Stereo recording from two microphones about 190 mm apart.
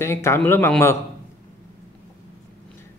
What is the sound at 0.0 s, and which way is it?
Speech, 15° left (ahead or behind).